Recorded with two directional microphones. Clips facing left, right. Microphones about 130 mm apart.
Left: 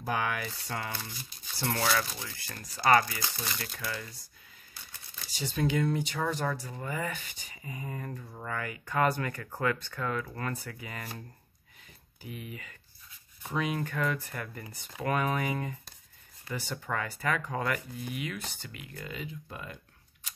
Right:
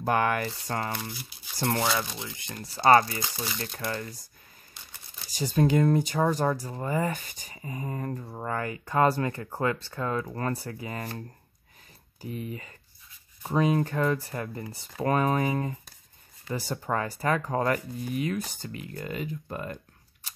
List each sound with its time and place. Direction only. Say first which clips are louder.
0.0 s speech: right 6 dB; 50° right (ahead or behind)
1.7 s speech: right 2 dB; 20° right (ahead or behind)
3.7 s speech: right 5 dB; 40° right (ahead or behind)
5.3 s speech: right 6 dB; 40° right (ahead or behind)
12.2 s speech: right 7 dB; 35° right (ahead or behind)